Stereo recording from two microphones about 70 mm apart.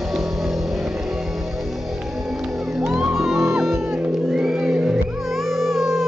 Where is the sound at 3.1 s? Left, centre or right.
Centre.